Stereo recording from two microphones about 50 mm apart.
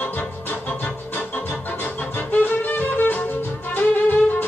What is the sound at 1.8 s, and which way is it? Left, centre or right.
Music, left.